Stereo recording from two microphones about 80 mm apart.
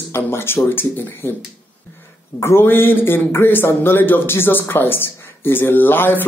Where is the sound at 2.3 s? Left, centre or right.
Left.